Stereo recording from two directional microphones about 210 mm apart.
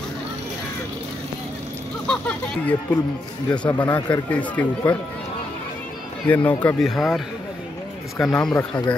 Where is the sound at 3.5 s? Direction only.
5° left (ahead or behind).